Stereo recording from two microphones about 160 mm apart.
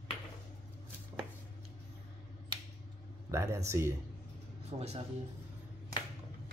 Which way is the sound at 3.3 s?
15° right (ahead or behind).